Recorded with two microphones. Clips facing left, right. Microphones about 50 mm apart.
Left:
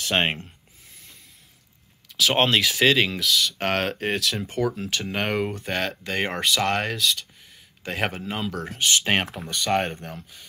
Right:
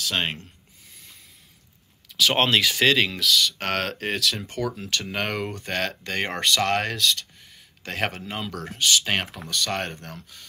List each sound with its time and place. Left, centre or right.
0.0 s speech: left
2.1 s speech: centre
8.7 s speech: left